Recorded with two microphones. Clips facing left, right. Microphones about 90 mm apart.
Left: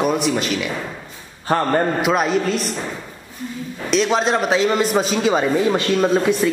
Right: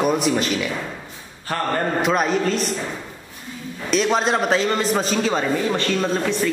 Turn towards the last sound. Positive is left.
turn(degrees=15)  # may be behind; listen again after turning